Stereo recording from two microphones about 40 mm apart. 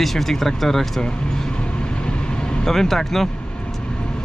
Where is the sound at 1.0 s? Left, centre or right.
Left.